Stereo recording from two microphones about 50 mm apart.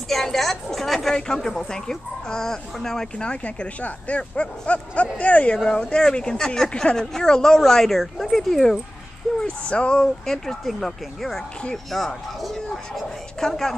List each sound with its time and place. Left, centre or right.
0.1 s a sound: centre
1.1 s speech: centre
3.2 s speech: left; by 8.7 s centre
9.6 s speech: left